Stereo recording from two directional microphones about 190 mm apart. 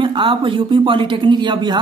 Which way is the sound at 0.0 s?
25° right (ahead or behind).